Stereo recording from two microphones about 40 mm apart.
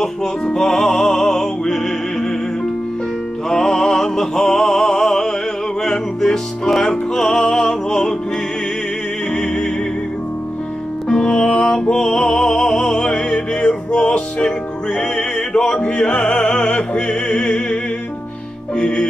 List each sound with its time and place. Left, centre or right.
0.6 s music: centre
3.4 s opera: centre
5.8 s music: centre
9.3 s music: centre
11.1 s music: centre
18.8 s music: left